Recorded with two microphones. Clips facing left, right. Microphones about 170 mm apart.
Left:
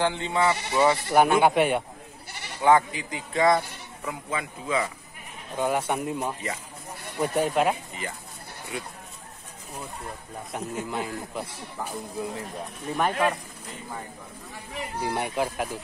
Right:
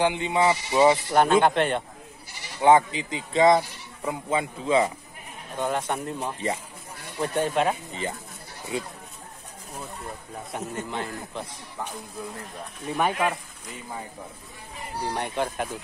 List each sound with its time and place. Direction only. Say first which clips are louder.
0.0 s speech: right 2 dB; 15° right (ahead or behind)
1.1 s speech: even; 10° left (ahead or behind)
2.6 s speech: right 2 dB; 20° right (ahead or behind)
5.6 s speech: left 2 dB; 10° left (ahead or behind)
7.9 s speech: right 4 dB; 25° right (ahead or behind)
10.5 s speech: left 1 dB; 5° left (ahead or behind)
12.8 s speech: even; 5° right (ahead or behind)
14.5 s speech: left 5 dB; 75° left (ahead or behind)
15.0 s speech: even; 10° left (ahead or behind)